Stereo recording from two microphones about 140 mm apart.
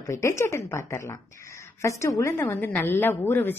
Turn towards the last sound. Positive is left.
turn(degrees=15)  # may be behind; listen again after turning